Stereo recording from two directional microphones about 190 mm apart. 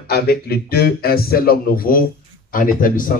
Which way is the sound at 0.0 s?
55° left (ahead or behind).